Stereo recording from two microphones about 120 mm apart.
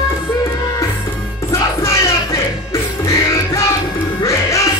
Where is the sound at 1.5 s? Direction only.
25° left (ahead or behind).